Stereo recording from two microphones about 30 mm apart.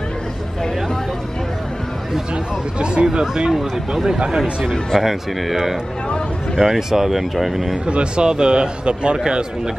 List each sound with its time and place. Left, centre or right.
2.8 s a man's voice: right; by 7.6 s centre
7.8 s a man's voice: right